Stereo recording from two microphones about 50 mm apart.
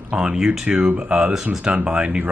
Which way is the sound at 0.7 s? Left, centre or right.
Right.